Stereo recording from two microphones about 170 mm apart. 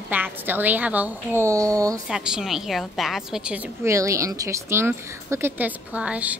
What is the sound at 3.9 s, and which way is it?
Speech, 20° right (ahead or behind).